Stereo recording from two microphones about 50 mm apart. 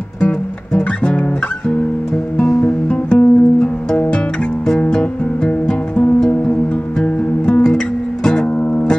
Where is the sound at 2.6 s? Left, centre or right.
Left.